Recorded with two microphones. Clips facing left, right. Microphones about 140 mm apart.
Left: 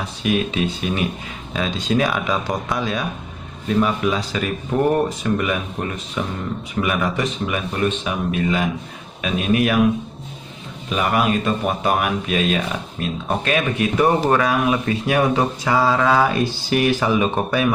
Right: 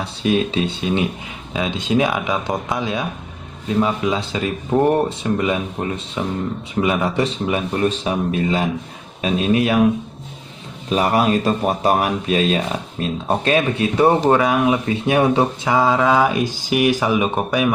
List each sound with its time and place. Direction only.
0.0 s speech: 30° right (ahead or behind)
10.9 s speech: 35° right (ahead or behind); by 17.6 s 15° right (ahead or behind)